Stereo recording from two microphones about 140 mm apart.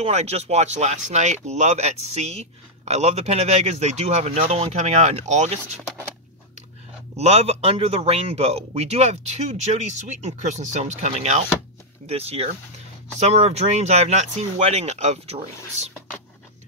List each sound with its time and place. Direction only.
0.0 s speech: 50° right (ahead or behind)
7.2 s speech: 50° right (ahead or behind)